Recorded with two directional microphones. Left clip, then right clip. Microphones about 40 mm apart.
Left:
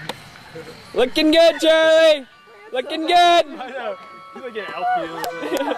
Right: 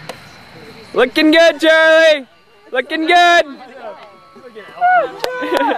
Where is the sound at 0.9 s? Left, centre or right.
Centre.